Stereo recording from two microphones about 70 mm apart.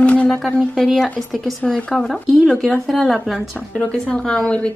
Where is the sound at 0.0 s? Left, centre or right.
Left.